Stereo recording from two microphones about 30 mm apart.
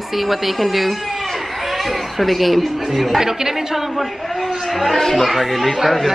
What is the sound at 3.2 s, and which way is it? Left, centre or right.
Speech, centre.